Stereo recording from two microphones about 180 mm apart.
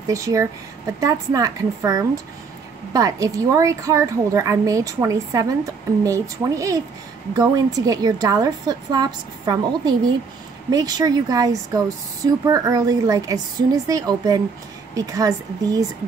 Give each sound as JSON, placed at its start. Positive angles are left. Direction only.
{"t": 0.0, "sound": "a woman's voice", "side_deg": -20}